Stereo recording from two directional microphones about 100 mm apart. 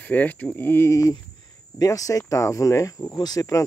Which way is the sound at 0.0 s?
15° left (ahead or behind).